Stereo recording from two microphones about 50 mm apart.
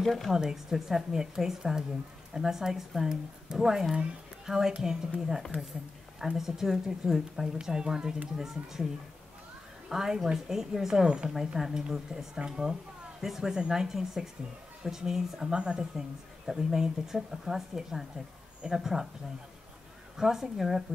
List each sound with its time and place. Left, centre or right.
0.0 s speech: centre
0.3 s speech: centre
6.2 s speech: centre
9.8 s speech: centre
20.2 s speech: centre